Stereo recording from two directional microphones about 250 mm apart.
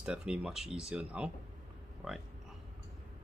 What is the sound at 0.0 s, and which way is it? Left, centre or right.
Speech, centre.